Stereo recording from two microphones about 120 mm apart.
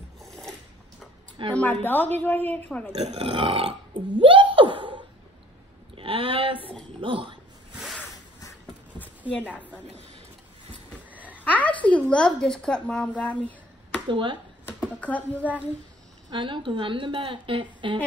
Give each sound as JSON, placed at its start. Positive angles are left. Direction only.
{"t": 1.5, "sound": "speech", "side_deg": 10}
{"t": 3.1, "sound": "speech", "side_deg": -45}
{"t": 5.9, "sound": "a sound", "side_deg": -50}
{"t": 7.0, "sound": "speech", "side_deg": -45}
{"t": 7.7, "sound": "a sound", "side_deg": -5}
{"t": 9.3, "sound": "speech", "side_deg": 10}
{"t": 11.1, "sound": "a sound", "side_deg": -15}
{"t": 11.5, "sound": "a woman's voice", "side_deg": 10}
{"t": 14.0, "sound": "speech", "side_deg": -40}
{"t": 14.8, "sound": "speech", "side_deg": 10}
{"t": 16.3, "sound": "a woman's voice", "side_deg": -40}